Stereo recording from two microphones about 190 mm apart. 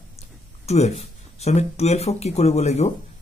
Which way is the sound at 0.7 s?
35° left (ahead or behind).